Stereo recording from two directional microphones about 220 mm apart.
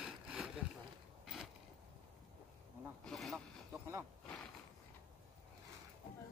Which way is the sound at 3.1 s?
Centre (ahead or behind).